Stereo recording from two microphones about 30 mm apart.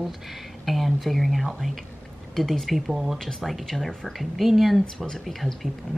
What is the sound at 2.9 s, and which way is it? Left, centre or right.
Speech, centre.